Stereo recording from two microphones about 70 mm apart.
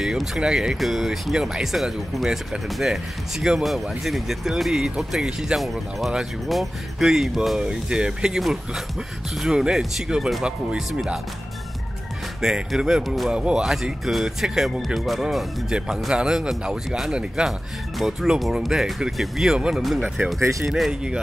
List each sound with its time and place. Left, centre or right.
0.0 s speech: centre
12.4 s speech: centre
13.3 s speech: centre
20.3 s speech: right
20.6 s speech: centre